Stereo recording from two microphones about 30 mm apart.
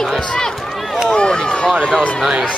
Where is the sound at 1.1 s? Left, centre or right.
Left.